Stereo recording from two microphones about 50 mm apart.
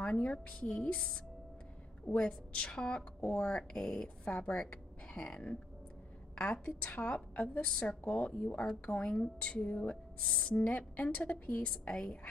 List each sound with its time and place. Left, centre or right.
0.0 s a woman's voice: left
2.0 s a woman's voice: left